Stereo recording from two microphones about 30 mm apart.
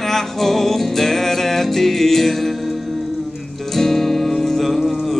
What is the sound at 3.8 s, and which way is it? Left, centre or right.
Music, centre.